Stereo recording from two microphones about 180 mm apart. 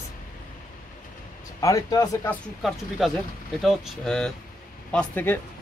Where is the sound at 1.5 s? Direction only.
20° left (ahead or behind).